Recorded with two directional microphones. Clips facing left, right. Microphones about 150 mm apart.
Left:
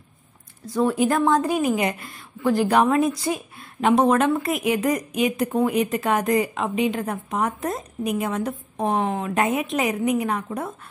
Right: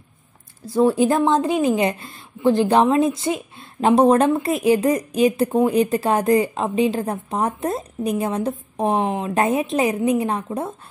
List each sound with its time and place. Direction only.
0.7 s a woman's voice: 30° right (ahead or behind)